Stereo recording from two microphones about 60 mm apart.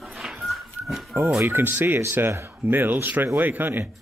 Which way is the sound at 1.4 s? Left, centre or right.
Right.